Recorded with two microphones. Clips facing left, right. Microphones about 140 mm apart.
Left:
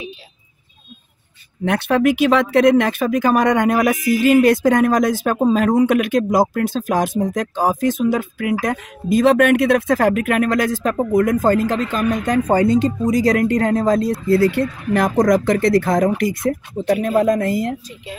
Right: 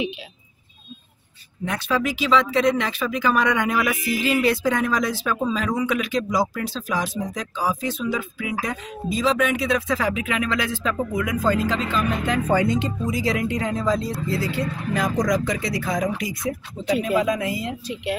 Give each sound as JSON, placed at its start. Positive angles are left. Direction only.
{"t": 1.6, "sound": "speech", "side_deg": 60}